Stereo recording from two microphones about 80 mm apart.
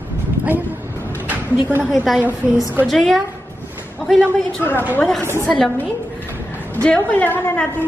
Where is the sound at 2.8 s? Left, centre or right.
Centre.